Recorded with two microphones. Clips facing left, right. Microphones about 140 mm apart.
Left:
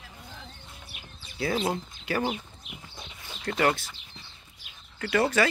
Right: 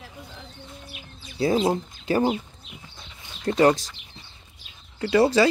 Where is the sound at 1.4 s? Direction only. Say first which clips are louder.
Right 6 dB; 30° right (ahead or behind).